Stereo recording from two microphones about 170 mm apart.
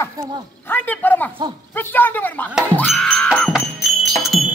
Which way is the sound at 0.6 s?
10° left (ahead or behind).